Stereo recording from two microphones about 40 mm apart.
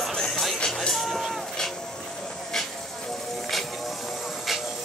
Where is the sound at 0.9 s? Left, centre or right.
Centre.